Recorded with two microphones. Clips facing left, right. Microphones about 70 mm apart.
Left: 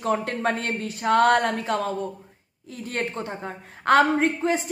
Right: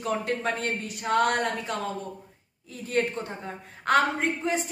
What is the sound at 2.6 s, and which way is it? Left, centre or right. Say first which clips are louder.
Speech: right 4 dB; left.